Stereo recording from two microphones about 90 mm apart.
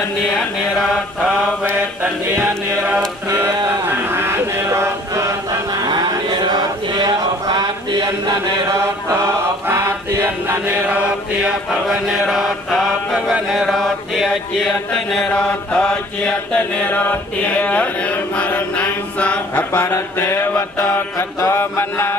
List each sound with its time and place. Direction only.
3.8 s chant: 25° right (ahead or behind)
5.8 s chant: 55° right (ahead or behind)
9.7 s music: 25° right (ahead or behind)
10.9 s chant: 15° right (ahead or behind)
12.1 s mantra: 5° right (ahead or behind); by 22.1 s 30° left (ahead or behind)